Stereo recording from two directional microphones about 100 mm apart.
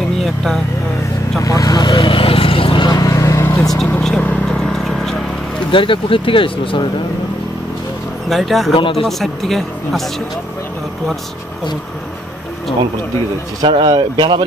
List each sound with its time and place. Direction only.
0.2 s vehicle: 5° left (ahead or behind)
1.4 s vehicle: 35° left (ahead or behind)
2.0 s vehicle: 65° left (ahead or behind); by 3.1 s 45° left (ahead or behind)
3.1 s vehicle: 30° left (ahead or behind)
3.6 s speech: 5° left (ahead or behind)
4.2 s a sound: 15° left (ahead or behind)
5.7 s speech: 60° left (ahead or behind)
8.3 s speech: centre (ahead or behind)
8.7 s speech: 60° left (ahead or behind)
9.0 s speech: centre (ahead or behind)
13.6 s speech: 50° right (ahead or behind)